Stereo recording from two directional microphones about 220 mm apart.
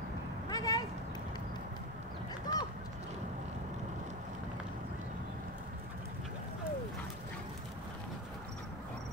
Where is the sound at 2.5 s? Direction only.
20° left (ahead or behind).